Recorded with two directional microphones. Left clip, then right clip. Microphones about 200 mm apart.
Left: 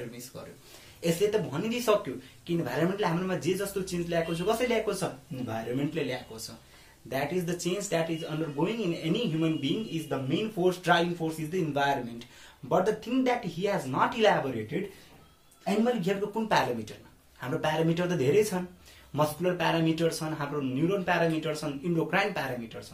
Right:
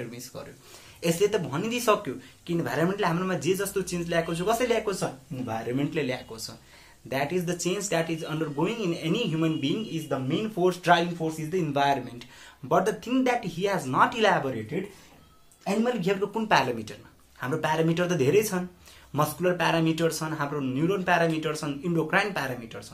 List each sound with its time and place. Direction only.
1.0 s speech: 10° right (ahead or behind)
5.9 s speech: 20° right (ahead or behind)
15.6 s speech: 20° right (ahead or behind)